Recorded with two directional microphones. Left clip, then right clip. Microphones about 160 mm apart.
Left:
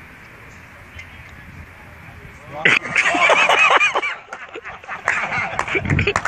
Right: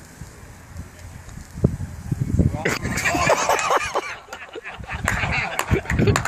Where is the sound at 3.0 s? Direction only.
15° left (ahead or behind).